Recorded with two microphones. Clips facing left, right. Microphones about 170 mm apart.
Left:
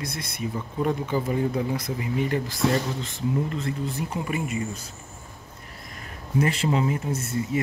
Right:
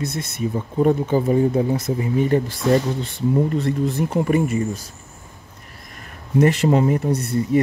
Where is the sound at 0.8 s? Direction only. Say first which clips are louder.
Right 8 dB; 45° right (ahead or behind).